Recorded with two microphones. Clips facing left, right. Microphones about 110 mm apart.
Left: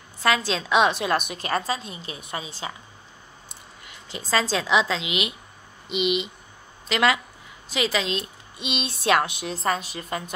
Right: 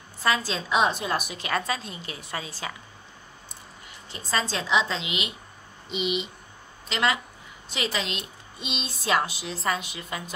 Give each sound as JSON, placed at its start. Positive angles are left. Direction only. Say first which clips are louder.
{"t": 0.2, "sound": "a woman's voice", "louder": "left 3 dB", "side_deg": 80}
{"t": 1.7, "sound": "a woman's voice", "louder": "left 2 dB", "side_deg": 25}
{"t": 3.8, "sound": "speech", "louder": "left 5 dB", "side_deg": 90}
{"t": 8.8, "sound": "a sound", "louder": "left 3 dB", "side_deg": 65}
{"t": 9.6, "sound": "a woman's voice", "louder": "left 2 dB", "side_deg": 40}